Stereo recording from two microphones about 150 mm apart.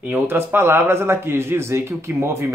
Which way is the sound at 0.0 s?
15° right (ahead or behind).